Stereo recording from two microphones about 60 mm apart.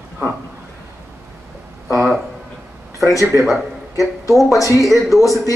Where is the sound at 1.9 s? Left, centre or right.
Centre.